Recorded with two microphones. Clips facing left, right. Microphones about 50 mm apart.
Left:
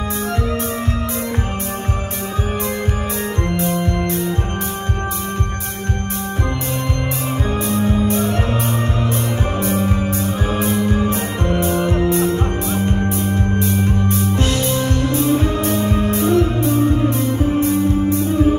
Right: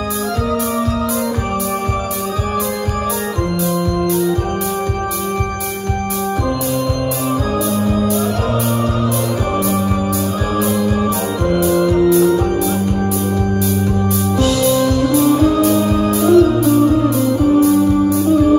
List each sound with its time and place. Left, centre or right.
7.7 s music: left
9.7 s music: left